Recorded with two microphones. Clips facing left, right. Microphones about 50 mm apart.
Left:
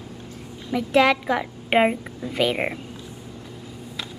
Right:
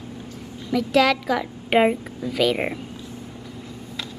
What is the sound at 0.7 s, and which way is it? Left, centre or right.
A woman's voice, left.